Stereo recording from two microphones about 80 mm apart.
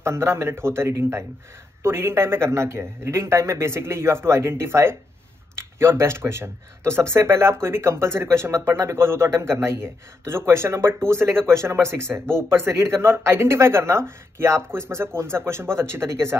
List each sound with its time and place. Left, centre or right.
0.0 s speech: right